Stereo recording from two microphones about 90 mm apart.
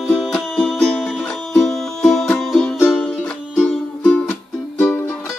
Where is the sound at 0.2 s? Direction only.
Centre (ahead or behind).